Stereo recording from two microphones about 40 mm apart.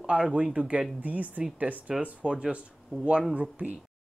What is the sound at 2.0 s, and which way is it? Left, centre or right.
A man's voice, right.